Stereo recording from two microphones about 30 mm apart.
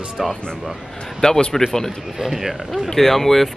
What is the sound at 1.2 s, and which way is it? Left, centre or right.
Speech, left.